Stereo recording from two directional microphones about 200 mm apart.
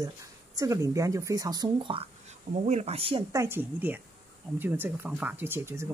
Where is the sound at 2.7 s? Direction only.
30° right (ahead or behind).